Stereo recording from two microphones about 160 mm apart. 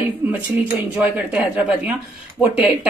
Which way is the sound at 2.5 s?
5° right (ahead or behind).